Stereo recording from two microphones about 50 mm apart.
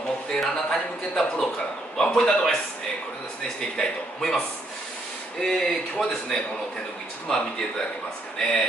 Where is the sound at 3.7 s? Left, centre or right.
Centre.